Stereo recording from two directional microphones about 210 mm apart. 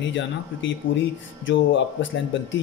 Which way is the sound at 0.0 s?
60° left (ahead or behind).